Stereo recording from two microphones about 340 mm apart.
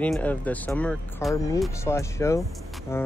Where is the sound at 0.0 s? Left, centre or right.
Centre.